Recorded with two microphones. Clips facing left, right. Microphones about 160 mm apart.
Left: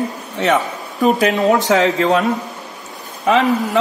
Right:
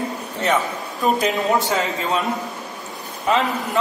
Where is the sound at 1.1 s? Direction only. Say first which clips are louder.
Left 5 dB; 85° left.